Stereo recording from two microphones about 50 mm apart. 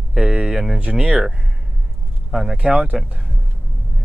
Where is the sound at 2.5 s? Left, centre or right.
Right.